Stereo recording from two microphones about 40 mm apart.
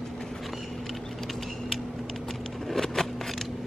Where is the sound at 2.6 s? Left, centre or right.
Centre.